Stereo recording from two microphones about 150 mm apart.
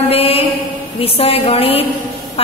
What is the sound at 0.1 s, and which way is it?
Mantra, 40° left (ahead or behind).